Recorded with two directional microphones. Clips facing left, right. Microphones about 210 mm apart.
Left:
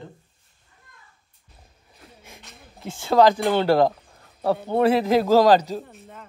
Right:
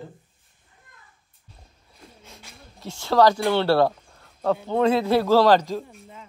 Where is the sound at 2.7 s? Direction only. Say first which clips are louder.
Left 2 dB; 55° left (ahead or behind).